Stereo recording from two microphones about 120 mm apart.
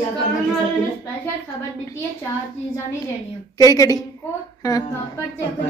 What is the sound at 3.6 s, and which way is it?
Speech, 30° left (ahead or behind).